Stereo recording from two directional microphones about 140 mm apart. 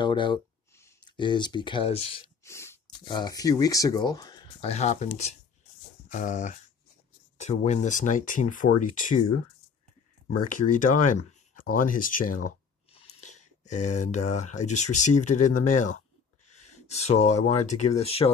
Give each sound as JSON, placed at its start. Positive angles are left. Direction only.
{"t": 0.0, "sound": "speech", "side_deg": 35}
{"t": 2.4, "sound": "sneeze", "side_deg": 20}
{"t": 3.1, "sound": "speech", "side_deg": 30}
{"t": 4.6, "sound": "speech", "side_deg": 50}
{"t": 7.3, "sound": "speech", "side_deg": 50}
{"t": 10.2, "sound": "speech", "side_deg": 70}
{"t": 13.0, "sound": "speech", "side_deg": 55}
{"t": 16.8, "sound": "speech", "side_deg": 50}